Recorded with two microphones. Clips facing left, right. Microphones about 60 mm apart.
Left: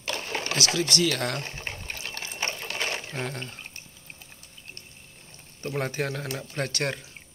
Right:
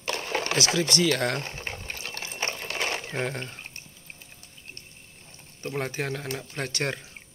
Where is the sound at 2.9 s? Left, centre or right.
Right.